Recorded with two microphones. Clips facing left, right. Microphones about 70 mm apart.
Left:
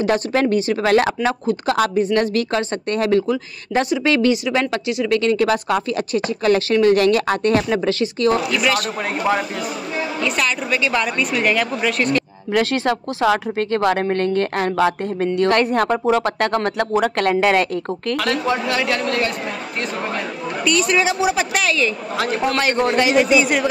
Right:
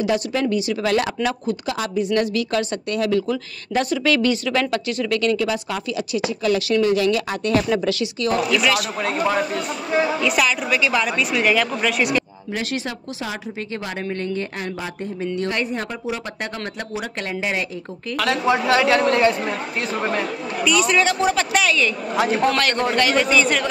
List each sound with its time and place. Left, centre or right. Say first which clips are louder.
0.0 s speech: left 3 dB; left
3.9 s speech: left 3 dB; left
5.4 s speech: left 6 dB; left
8.5 s speech: even; centre
10.3 s speech: right 1 dB; centre
12.5 s speech: left 8 dB; left
18.1 s speech: even; centre
18.5 s a man's voice: right 3 dB; centre
20.6 s a man's voice: even; centre